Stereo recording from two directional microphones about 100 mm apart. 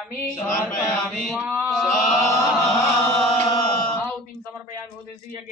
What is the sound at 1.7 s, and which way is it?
Chant, 5° left (ahead or behind).